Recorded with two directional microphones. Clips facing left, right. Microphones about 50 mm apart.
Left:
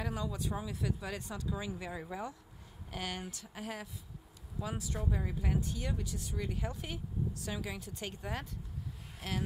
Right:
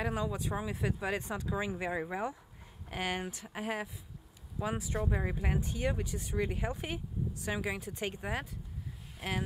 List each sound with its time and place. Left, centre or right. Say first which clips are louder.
0.0 s speech: right 4 dB; right